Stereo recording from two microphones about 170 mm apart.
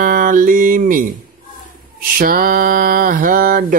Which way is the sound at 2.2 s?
60° right (ahead or behind).